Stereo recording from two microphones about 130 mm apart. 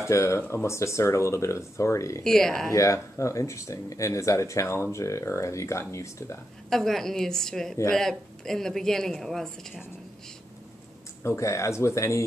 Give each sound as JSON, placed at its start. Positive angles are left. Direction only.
{"t": 0.0, "sound": "speech", "side_deg": 20}
{"t": 2.2, "sound": "speech", "side_deg": 5}
{"t": 2.7, "sound": "speech", "side_deg": 25}
{"t": 6.7, "sound": "speech", "side_deg": 5}
{"t": 11.2, "sound": "speech", "side_deg": 25}